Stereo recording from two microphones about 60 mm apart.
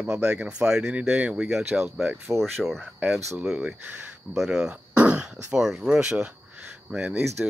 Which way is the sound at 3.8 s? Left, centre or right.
Right.